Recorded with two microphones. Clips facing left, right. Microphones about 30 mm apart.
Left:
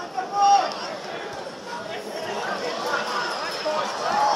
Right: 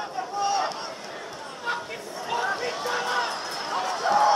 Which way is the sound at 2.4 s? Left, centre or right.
Left.